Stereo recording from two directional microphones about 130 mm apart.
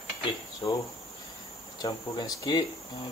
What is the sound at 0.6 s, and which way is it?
Speech, 25° left (ahead or behind).